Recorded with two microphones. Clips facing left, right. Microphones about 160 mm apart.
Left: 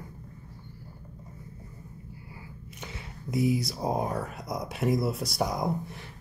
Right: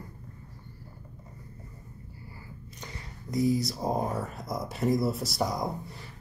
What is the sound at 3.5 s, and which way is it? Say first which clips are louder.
Speech: even; centre (ahead or behind).